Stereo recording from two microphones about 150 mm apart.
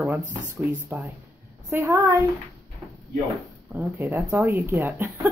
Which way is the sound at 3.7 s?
10° right (ahead or behind).